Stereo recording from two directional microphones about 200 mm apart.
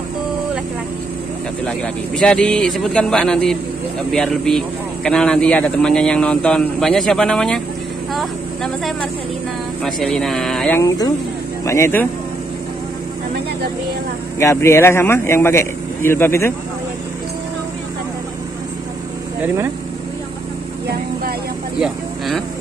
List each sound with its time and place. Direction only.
2.1 s speech: 5° left (ahead or behind)
9.8 s speech: 5° left (ahead or behind)
11.6 s a man's voice: 15° left (ahead or behind)
14.4 s a man's voice: 15° left (ahead or behind)
19.4 s speech: 10° right (ahead or behind)
21.7 s vehicle: centre (ahead or behind)